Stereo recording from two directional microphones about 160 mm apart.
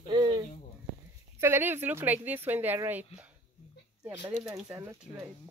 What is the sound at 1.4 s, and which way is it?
A woman's voice, 15° right (ahead or behind).